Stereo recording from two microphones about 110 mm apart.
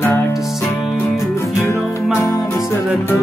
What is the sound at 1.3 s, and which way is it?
Music, 25° left (ahead or behind).